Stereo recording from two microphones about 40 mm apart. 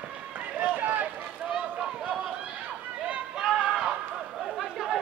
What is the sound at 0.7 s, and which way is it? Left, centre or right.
Run, right.